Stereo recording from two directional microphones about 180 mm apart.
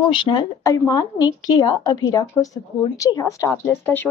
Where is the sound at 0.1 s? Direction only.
25° left (ahead or behind).